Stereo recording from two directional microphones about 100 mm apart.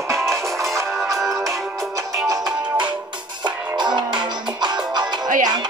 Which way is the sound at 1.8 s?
35° right (ahead or behind).